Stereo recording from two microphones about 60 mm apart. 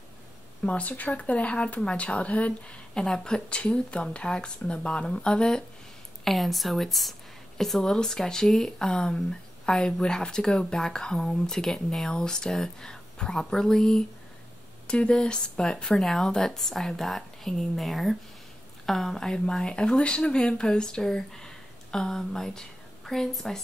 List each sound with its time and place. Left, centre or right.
0.7 s speech: left
6.2 s a woman's voice: centre